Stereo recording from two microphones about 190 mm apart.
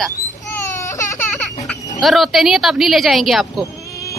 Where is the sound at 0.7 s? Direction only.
15° left (ahead or behind).